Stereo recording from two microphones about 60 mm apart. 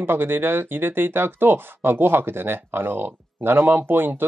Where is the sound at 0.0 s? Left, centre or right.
Right.